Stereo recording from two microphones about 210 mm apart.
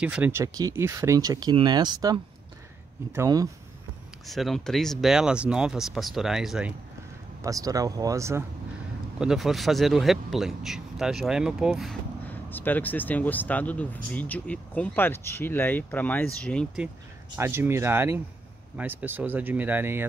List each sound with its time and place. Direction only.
0.0 s speech: 5° right (ahead or behind)
3.2 s speech: 15° right (ahead or behind)
4.3 s speech: centre (ahead or behind)
7.4 s speech: 15° right (ahead or behind)
9.2 s speech: centre (ahead or behind)
12.4 s speech: 10° left (ahead or behind)
17.4 s speech: 10° right (ahead or behind)